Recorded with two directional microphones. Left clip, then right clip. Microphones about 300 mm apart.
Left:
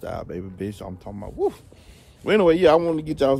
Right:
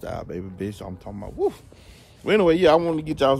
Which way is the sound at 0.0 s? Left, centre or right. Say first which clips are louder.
Left 1 dB; centre.